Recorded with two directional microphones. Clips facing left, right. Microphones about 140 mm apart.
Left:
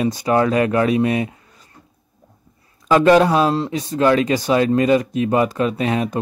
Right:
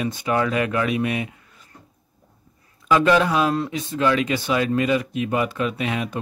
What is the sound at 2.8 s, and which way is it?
A man's voice, 40° left (ahead or behind).